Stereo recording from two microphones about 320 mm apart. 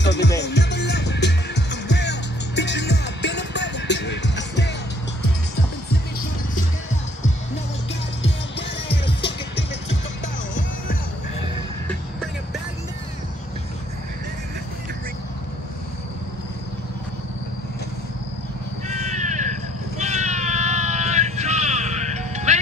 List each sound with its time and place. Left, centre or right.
0.0 s music: left
8.2 s music: left
18.9 s crow: right
20.0 s a sound: right